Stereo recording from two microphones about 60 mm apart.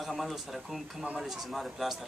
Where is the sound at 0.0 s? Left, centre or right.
Centre.